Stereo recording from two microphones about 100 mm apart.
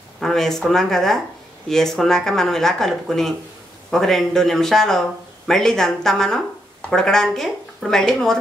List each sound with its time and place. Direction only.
0.2 s speech: 5° left (ahead or behind)